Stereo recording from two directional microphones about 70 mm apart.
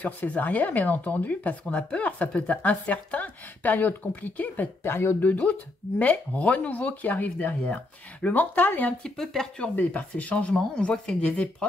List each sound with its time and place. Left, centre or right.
0.3 s speech: left
4.8 s speech: left
5.2 s speech: left
9.0 s speech: centre
9.8 s speech: left